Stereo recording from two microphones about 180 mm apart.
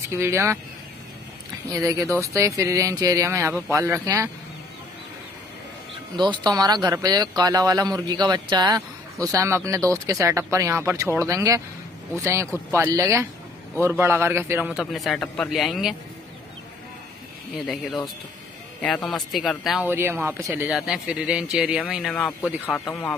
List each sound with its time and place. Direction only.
0.1 s speech: 15° right (ahead or behind)
1.7 s speech: 20° right (ahead or behind)
6.1 s speech: 25° right (ahead or behind)
14.8 s a man's voice: centre (ahead or behind)
17.6 s a man's voice: 5° left (ahead or behind)
19.9 s a man's voice: 10° right (ahead or behind)